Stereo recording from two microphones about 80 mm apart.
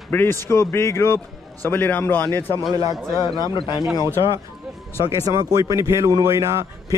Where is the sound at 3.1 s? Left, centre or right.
Left.